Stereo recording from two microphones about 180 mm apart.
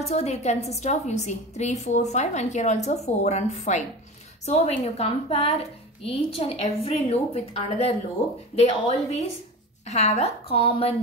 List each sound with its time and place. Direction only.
0.0 s a woman's voice: 35° left (ahead or behind)